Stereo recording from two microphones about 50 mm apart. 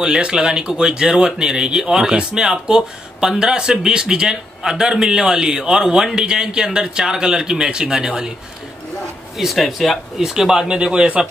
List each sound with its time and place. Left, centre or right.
0.0 s a man's voice: centre
9.4 s a man's voice: centre